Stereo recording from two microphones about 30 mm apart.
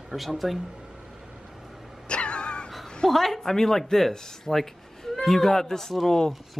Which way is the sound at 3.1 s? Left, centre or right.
Centre.